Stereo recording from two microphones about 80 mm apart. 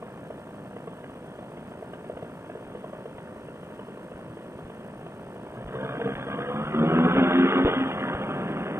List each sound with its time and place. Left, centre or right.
5.7 s vehicle: right